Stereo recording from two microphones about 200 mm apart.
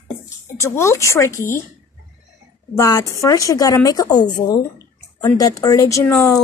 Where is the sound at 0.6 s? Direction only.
15° left (ahead or behind).